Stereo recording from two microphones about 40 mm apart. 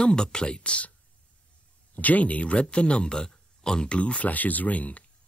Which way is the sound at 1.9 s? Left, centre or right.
Left.